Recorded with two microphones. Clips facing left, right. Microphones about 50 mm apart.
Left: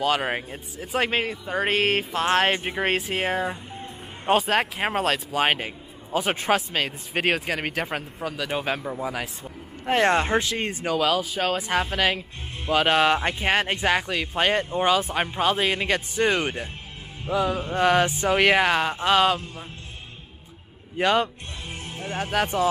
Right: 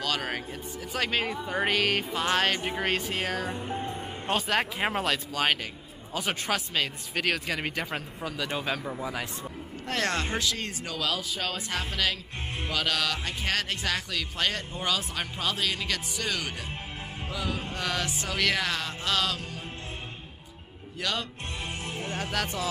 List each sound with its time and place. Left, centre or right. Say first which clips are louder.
0.0 s speech: left 7 dB; left
4.3 s speech: left 6 dB; centre
8.2 s a man's voice: left 3 dB; centre
8.5 s speech: left 5 dB; centre
9.8 s speech: left 9 dB; left
21.0 s speech: left 11 dB; left
22.0 s speech: left 7 dB; centre